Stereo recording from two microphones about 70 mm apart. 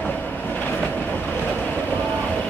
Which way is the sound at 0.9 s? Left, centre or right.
Left.